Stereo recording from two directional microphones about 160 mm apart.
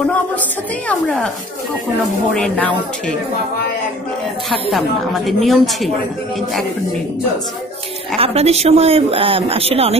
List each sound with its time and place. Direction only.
0.8 s speech: 5° left (ahead or behind)
2.3 s speech: 5° left (ahead or behind)
4.5 s speech: centre (ahead or behind)
8.2 s speech: 40° right (ahead or behind)